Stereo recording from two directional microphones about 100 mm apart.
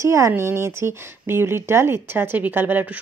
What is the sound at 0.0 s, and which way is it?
Speech, 30° right (ahead or behind).